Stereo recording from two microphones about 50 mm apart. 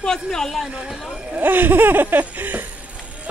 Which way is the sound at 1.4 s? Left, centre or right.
Right.